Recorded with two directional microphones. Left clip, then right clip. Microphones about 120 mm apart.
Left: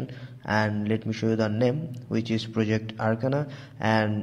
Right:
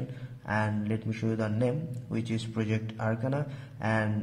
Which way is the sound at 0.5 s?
35° left (ahead or behind).